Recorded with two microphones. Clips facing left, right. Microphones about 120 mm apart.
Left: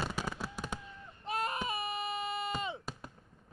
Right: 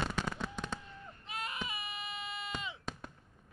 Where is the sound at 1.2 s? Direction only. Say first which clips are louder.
Left 7 dB; 40° left (ahead or behind).